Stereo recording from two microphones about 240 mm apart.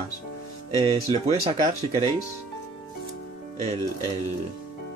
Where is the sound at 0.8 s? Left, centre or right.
Right.